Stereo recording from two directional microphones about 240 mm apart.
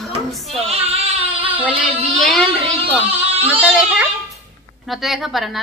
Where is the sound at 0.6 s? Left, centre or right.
Right.